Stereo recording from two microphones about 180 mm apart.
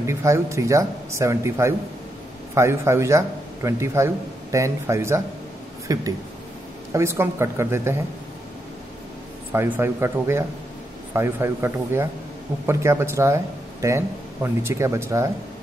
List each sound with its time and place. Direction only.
0.0 s a man's voice: 15° right (ahead or behind)
9.5 s a man's voice: 15° right (ahead or behind)